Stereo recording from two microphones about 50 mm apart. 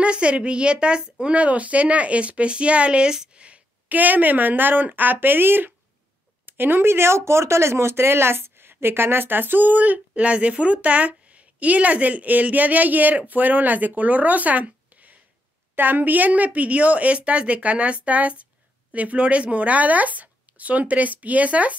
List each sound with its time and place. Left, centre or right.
0.0 s speech: right